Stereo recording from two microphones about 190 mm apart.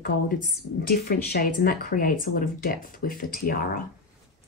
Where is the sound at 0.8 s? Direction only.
50° left (ahead or behind).